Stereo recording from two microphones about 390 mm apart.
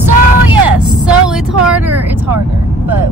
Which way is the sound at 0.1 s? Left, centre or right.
Right.